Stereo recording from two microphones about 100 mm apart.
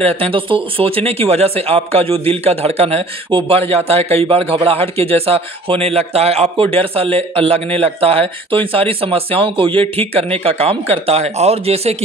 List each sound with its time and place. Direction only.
0.0 s a man's voice: 65° right (ahead or behind); by 12.0 s 90° right